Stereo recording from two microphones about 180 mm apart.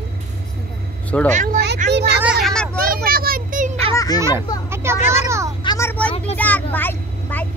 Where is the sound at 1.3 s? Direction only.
45° right (ahead or behind).